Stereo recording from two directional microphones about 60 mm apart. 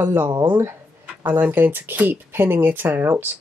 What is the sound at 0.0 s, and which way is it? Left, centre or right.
Speech, right.